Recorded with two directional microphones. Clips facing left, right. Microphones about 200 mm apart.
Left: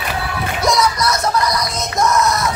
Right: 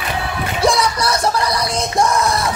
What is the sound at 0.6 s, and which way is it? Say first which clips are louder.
Music: right 1 dB; 30° right (ahead or behind).